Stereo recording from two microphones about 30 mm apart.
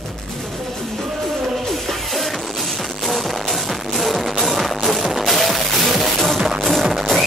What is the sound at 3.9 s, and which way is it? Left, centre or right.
Music, centre.